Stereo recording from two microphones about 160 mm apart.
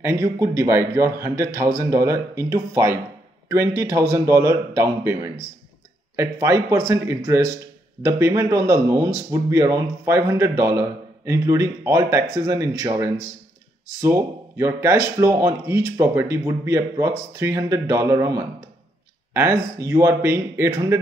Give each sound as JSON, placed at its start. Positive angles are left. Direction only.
{"t": 0.0, "sound": "a man's voice", "side_deg": -20}